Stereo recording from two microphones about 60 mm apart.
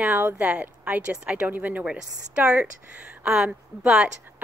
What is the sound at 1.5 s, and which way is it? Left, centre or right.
Speech, right.